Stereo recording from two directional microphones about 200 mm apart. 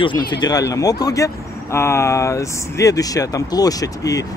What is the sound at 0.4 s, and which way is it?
Speech, 20° left (ahead or behind).